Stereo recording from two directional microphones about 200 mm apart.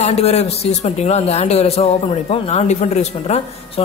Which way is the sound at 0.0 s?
30° left (ahead or behind).